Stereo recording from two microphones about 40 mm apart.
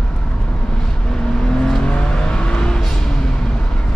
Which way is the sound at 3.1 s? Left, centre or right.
Centre.